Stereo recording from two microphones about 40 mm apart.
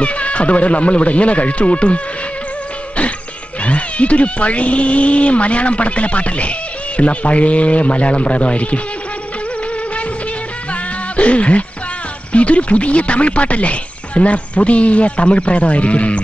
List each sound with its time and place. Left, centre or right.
0.0 s speech: left
3.6 s speech: left
10.7 s music: left
12.3 s speech: left